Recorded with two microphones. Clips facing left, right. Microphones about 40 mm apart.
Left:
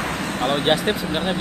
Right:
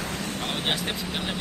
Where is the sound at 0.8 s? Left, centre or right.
Left.